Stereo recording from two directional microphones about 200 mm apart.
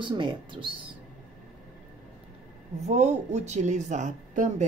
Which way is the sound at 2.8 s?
35° right (ahead or behind).